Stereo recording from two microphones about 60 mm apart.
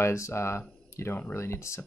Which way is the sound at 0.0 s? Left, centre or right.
Left.